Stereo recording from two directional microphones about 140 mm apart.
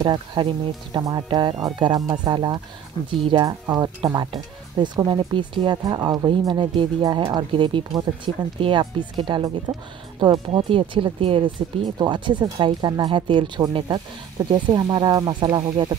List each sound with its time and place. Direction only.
0.0 s speech: 30° right (ahead or behind)
2.9 s speech: 35° left (ahead or behind)
3.3 s speech: 30° right (ahead or behind)